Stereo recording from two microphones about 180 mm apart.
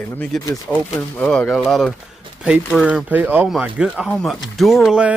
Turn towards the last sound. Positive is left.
turn(degrees=-5)  # may be behind; listen again after turning